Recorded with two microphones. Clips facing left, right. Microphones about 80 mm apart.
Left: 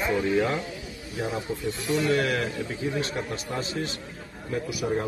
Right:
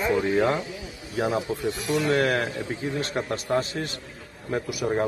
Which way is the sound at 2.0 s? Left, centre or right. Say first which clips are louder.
Right 2 dB; right.